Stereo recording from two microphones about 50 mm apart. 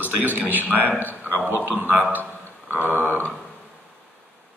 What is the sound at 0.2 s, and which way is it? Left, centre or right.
A man's voice, right.